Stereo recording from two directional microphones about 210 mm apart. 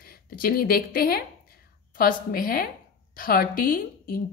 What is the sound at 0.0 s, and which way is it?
A woman's voice, 45° left (ahead or behind).